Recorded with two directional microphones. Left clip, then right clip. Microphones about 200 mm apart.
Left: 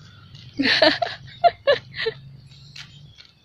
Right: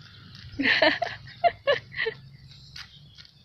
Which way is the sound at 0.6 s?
5° left (ahead or behind).